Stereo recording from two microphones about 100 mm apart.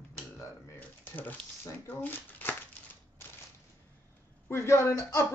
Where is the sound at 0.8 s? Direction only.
20° left (ahead or behind).